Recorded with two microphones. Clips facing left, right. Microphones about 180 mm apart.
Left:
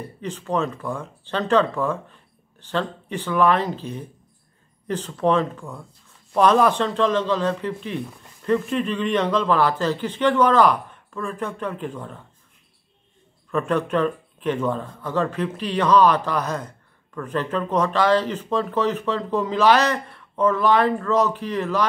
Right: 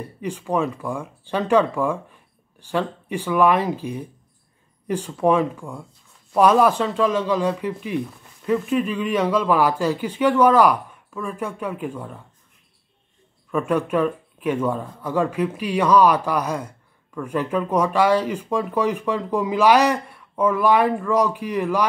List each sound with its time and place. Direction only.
0.2 s speech: 10° right (ahead or behind)
13.5 s speech: 10° right (ahead or behind)